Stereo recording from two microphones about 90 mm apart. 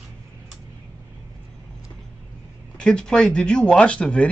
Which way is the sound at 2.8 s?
10° left (ahead or behind).